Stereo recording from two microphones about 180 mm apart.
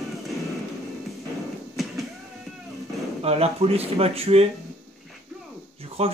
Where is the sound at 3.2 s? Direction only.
35° right (ahead or behind).